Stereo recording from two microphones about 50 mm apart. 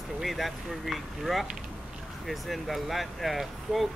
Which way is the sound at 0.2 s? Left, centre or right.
Centre.